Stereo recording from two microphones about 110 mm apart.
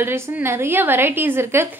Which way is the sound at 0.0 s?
20° right (ahead or behind).